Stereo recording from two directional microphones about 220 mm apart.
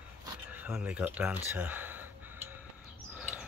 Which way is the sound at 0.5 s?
5° right (ahead or behind).